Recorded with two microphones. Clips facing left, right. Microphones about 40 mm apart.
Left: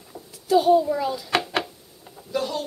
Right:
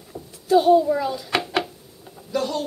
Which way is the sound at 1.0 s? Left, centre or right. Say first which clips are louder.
Even; centre.